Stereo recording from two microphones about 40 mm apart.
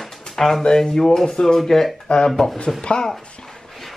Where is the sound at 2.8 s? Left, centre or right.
Left.